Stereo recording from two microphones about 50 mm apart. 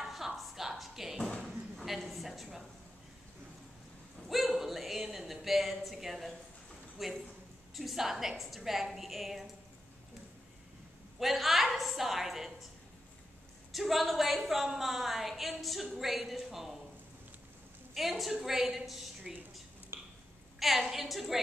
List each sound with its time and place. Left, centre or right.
0.0 s a sound: centre
0.4 s a woman's voice: centre
4.3 s a woman's voice: centre
11.1 s a woman's voice: centre
13.7 s a woman's voice: centre
17.9 s a woman's voice: centre
19.9 s a sound: right
20.5 s a woman's voice: centre